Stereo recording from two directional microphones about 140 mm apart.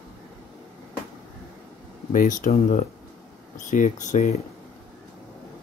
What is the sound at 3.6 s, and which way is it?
Speech, 65° left (ahead or behind).